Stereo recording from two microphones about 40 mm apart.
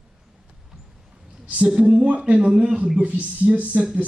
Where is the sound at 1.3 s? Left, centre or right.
Right.